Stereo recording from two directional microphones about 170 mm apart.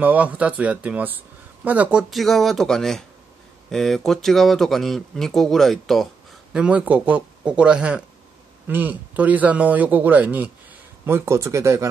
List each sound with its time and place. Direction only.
0.0 s speech: 10° right (ahead or behind)